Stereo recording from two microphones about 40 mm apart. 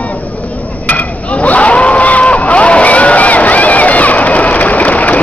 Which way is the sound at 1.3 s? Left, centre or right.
Left.